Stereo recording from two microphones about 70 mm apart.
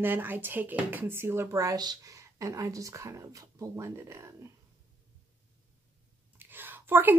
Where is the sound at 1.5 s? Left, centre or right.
Right.